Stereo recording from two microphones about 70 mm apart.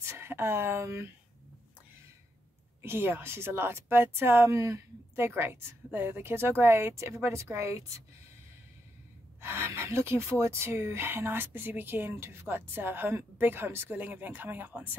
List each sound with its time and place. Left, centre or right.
0.0 s speech: right
2.8 s a woman's voice: right
4.6 s speech: right
5.1 s a woman's voice: right
9.4 s a woman's voice: right